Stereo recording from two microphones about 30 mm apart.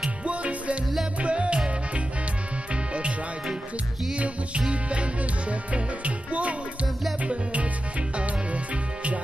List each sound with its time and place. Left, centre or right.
0.2 s music: right
2.7 s music: right
8.2 s music: right